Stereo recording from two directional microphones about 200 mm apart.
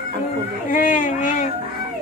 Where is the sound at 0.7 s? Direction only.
40° left (ahead or behind).